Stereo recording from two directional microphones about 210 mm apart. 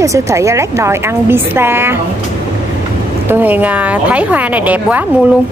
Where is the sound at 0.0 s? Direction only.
15° right (ahead or behind).